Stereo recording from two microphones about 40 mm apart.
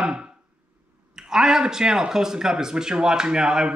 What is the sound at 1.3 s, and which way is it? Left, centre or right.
A man's voice, centre.